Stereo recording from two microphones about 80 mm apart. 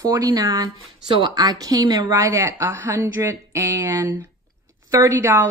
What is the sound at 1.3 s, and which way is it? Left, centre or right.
A woman's voice, right.